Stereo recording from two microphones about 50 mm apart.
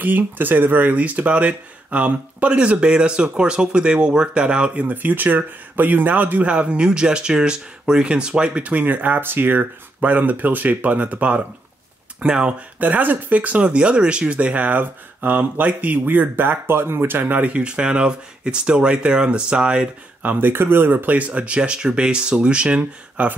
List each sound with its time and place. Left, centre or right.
0.0 s speech: right
4.8 s speech: right
6.5 s speech: right
12.8 s speech: right
17.3 s speech: right
20.2 s speech: right
21.3 s speech: right